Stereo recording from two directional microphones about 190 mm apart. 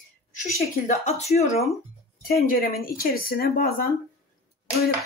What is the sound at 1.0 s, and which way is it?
Speech, 35° left (ahead or behind).